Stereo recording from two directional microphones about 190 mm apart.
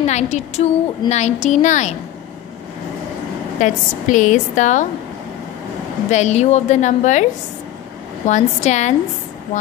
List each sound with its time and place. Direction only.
0.0 s a woman's voice: 35° left (ahead or behind)
3.5 s a woman's voice: 40° left (ahead or behind)
6.0 s a woman's voice: 40° left (ahead or behind)
8.3 s a woman's voice: 40° left (ahead or behind)